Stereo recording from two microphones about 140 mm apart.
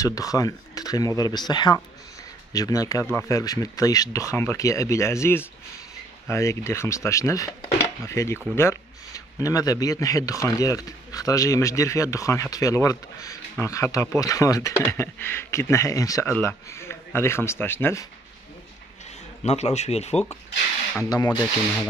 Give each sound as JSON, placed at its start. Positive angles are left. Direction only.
{"t": 0.0, "sound": "a man's voice", "side_deg": 25}
{"t": 19.4, "sound": "speech", "side_deg": 50}
{"t": 21.0, "sound": "a man's voice", "side_deg": 30}